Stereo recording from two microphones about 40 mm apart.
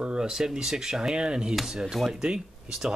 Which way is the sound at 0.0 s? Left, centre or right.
Centre.